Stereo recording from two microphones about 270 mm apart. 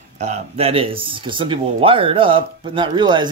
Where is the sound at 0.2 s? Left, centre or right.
Right.